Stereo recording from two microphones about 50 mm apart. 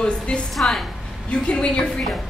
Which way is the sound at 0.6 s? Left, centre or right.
Centre.